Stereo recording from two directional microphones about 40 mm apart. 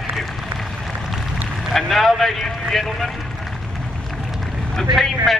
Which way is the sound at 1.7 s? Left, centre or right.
Centre.